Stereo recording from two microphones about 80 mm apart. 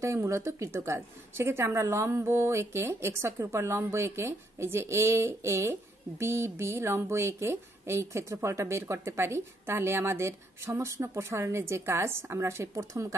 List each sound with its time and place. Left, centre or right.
0.0 s a woman's voice: right